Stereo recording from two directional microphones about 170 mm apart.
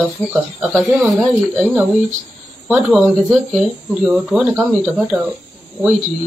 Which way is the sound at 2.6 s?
10° right (ahead or behind).